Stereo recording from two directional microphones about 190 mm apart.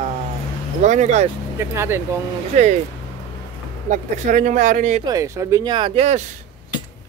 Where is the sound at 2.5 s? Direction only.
35° right (ahead or behind).